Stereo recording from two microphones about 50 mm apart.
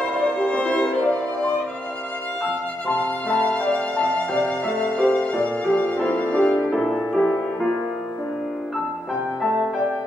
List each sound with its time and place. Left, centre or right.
0.4 s violin: left
2.4 s violin: left
6.8 s music: left